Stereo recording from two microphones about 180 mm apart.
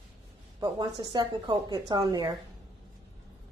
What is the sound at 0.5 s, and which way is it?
A woman's voice, 25° right (ahead or behind).